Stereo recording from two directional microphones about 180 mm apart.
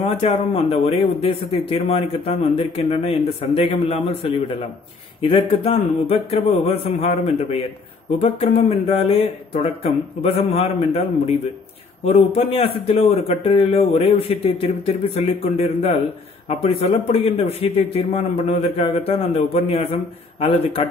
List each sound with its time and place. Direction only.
0.0 s speech: 35° left (ahead or behind)